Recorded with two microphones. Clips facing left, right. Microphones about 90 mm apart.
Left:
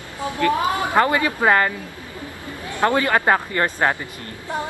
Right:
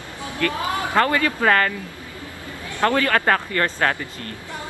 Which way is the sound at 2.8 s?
20° left (ahead or behind).